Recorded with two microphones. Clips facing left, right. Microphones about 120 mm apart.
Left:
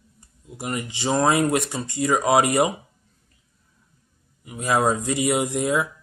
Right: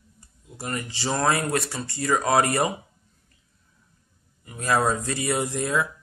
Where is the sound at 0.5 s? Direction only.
15° left (ahead or behind).